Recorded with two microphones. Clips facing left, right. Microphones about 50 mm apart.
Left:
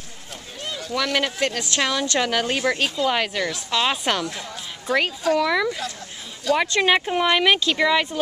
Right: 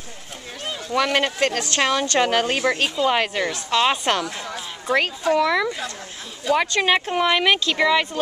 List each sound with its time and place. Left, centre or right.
0.9 s a woman's voice: right
1.4 s speech: right
1.8 s a woman's voice: right
2.6 s a woman's voice: centre